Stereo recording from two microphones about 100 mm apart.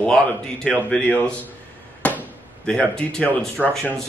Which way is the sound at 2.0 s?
15° left (ahead or behind).